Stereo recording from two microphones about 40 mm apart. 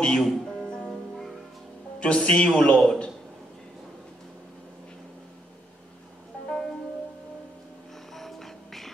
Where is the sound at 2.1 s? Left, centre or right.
Centre.